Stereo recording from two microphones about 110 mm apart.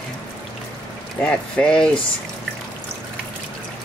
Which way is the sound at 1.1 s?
10° left (ahead or behind).